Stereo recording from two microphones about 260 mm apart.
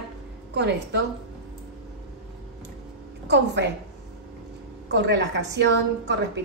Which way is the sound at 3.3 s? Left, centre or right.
Right.